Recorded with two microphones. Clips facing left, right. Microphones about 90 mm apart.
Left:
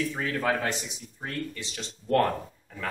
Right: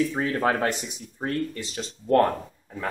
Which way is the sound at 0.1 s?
30° right (ahead or behind).